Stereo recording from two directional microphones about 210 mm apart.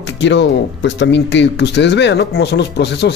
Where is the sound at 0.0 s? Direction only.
55° left (ahead or behind).